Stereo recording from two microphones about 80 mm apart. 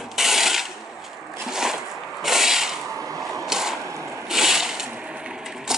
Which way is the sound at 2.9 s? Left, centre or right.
Right.